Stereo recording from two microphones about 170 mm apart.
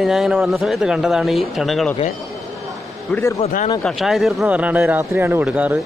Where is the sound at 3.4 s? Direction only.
35° left (ahead or behind).